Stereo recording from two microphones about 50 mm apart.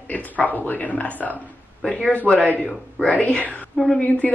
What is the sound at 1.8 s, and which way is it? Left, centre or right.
Speech, centre.